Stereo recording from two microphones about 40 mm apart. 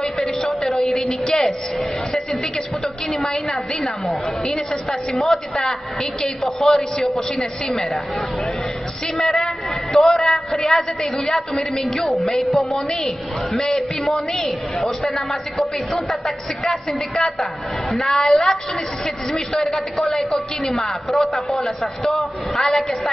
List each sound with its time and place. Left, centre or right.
0.0 s a sound: centre
1.3 s a man's voice: centre
3.3 s a man's voice: centre
5.1 s a woman's voice: centre
9.1 s a woman's voice: centre